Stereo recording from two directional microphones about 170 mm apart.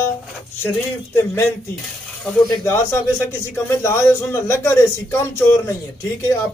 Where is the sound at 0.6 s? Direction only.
15° left (ahead or behind).